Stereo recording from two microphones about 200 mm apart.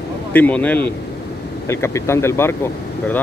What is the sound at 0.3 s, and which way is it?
Speech, 10° left (ahead or behind).